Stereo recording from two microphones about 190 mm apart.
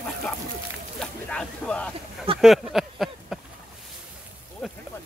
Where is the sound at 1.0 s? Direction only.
5° left (ahead or behind).